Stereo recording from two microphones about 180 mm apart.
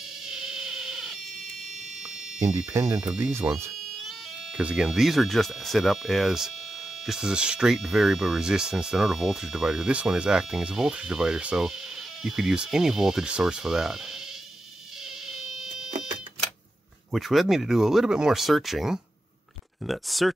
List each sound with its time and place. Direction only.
0.3 s a sound: 5° right (ahead or behind)
2.4 s speech: 15° right (ahead or behind)
2.9 s speech: 5° right (ahead or behind)
3.4 s speech: 15° right (ahead or behind)
4.6 s speech: 5° right (ahead or behind)
15.2 s fire alarm: centre (ahead or behind)
17.1 s speech: centre (ahead or behind)